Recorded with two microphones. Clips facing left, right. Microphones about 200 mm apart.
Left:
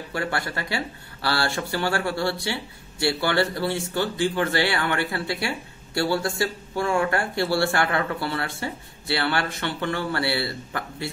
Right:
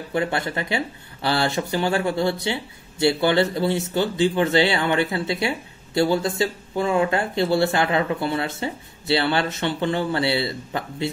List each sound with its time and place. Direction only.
0.1 s speech: 20° right (ahead or behind)